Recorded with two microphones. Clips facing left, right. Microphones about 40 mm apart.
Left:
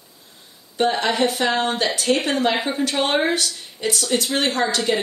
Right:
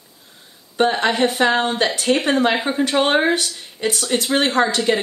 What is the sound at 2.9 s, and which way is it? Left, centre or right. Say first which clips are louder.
Speech: right 4 dB; right.